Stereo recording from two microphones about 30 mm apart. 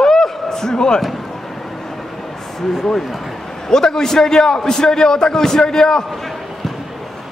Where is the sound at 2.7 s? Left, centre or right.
Centre.